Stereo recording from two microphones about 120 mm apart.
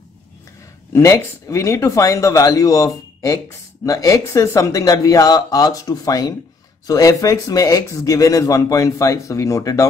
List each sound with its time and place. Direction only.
1.0 s speech: 25° left (ahead or behind)